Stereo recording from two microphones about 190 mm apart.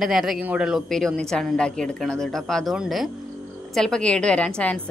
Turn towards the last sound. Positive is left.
turn(degrees=5)  # may be behind; listen again after turning